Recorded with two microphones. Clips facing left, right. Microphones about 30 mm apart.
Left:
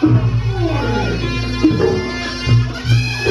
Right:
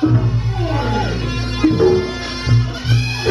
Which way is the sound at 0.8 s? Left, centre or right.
Centre.